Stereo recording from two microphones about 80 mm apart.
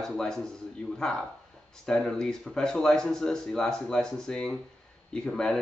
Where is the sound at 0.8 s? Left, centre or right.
Centre.